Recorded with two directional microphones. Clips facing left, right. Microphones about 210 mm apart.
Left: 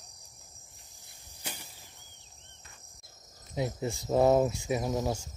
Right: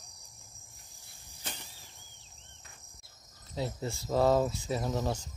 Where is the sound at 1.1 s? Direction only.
10° left (ahead or behind).